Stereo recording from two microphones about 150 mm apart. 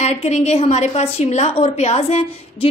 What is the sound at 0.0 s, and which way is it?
A woman's voice, 45° left (ahead or behind).